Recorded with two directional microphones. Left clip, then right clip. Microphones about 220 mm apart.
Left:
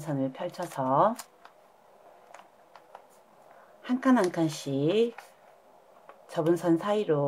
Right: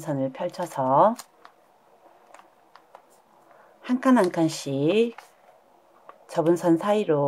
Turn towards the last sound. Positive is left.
turn(degrees=-25)  # may be behind; listen again after turning